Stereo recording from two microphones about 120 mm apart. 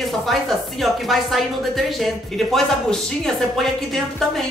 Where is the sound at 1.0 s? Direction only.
Centre (ahead or behind).